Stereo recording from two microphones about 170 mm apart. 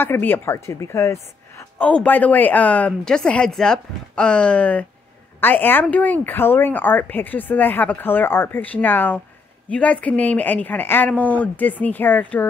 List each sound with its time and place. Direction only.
0.0 s speech: 15° left (ahead or behind)